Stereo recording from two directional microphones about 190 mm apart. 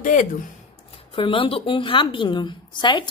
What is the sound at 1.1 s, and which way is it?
A woman's voice, 25° left (ahead or behind).